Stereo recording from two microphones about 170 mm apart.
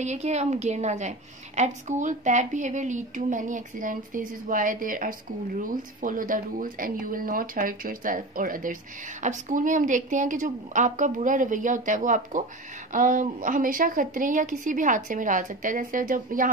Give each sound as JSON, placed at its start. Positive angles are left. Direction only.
{"t": 0.0, "sound": "a woman's voice", "side_deg": -40}